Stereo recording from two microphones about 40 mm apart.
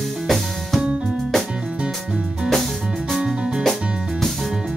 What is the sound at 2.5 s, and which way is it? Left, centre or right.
Music, centre.